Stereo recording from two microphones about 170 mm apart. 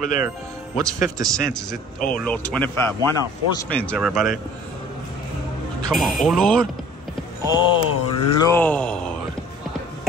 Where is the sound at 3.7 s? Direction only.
5° left (ahead or behind).